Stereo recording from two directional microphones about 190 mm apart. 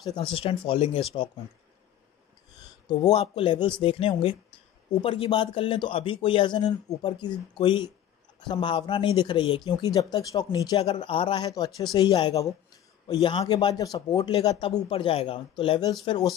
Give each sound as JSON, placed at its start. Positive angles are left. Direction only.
{"t": 0.3, "sound": "speech", "side_deg": 30}
{"t": 2.9, "sound": "speech", "side_deg": 20}